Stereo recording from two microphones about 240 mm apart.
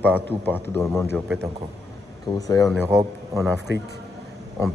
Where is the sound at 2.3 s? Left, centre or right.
Centre.